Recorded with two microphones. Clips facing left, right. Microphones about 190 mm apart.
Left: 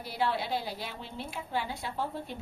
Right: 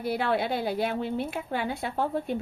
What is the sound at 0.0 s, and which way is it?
A woman's voice, 60° right (ahead or behind).